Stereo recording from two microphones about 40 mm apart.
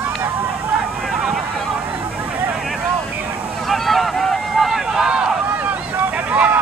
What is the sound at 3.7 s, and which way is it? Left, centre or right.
Honk, centre.